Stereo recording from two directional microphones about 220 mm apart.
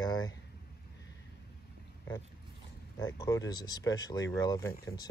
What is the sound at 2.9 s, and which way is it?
Speech, 15° left (ahead or behind).